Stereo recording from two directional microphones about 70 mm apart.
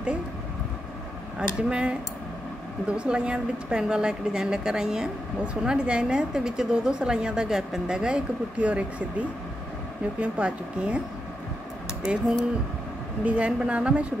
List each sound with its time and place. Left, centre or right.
1.7 s a woman's voice: centre
10.2 s a woman's voice: centre
12.0 s a woman's voice: centre